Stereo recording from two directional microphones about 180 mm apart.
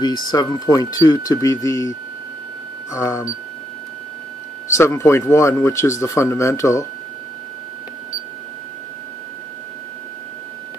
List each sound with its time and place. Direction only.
0.0 s speech: 20° left (ahead or behind)
4.7 s speech: 15° left (ahead or behind)